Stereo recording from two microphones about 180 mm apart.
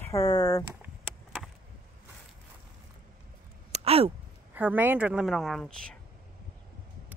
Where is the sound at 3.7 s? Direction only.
35° right (ahead or behind).